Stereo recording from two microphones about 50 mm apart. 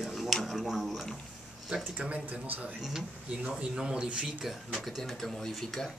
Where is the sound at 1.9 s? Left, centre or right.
Right.